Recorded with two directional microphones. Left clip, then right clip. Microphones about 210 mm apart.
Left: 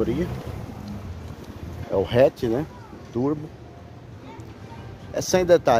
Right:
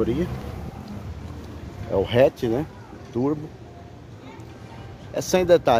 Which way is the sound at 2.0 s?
Centre (ahead or behind).